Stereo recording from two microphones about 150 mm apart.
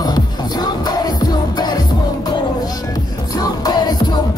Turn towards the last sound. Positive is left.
turn(degrees=30)  # may be behind; listen again after turning